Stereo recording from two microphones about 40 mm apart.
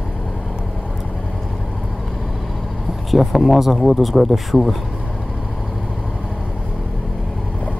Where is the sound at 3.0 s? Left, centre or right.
Centre.